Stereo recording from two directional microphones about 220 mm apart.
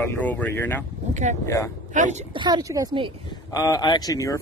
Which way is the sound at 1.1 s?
35° right (ahead or behind).